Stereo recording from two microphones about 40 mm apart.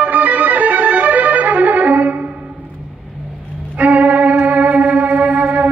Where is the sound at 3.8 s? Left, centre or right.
Right.